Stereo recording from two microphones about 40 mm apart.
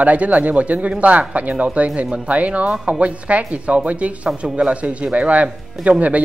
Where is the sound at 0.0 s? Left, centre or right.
Right.